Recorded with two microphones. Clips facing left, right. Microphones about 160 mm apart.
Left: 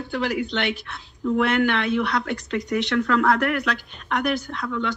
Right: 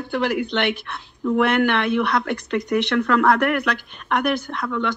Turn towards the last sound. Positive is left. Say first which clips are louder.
# right 2 dB
turn(degrees=-60)  # may be behind; listen again after turning